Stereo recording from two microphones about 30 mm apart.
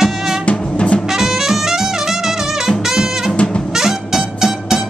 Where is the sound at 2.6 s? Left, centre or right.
Centre.